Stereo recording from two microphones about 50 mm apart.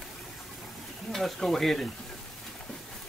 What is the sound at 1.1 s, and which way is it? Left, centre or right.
Stir, centre.